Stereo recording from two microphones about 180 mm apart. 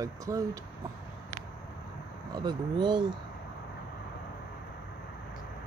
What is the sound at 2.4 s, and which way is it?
Speech, 25° right (ahead or behind).